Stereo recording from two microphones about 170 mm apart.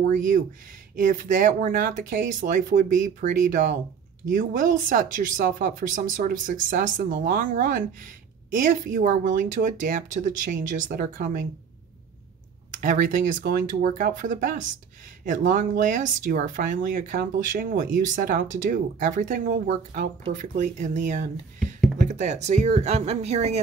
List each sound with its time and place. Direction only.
0.1 s speech: 50° right (ahead or behind)
12.8 s speech: 50° right (ahead or behind)